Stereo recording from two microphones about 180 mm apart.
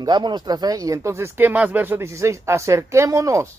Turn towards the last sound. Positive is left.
turn(degrees=-15)  # may be behind; listen again after turning